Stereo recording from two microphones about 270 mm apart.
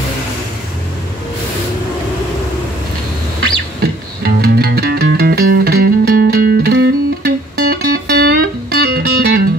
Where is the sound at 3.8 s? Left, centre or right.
Right.